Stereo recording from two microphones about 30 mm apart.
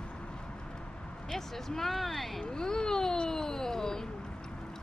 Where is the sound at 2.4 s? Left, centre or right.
Left.